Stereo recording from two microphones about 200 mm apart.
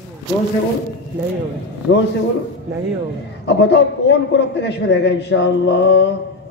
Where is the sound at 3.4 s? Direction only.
60° left (ahead or behind).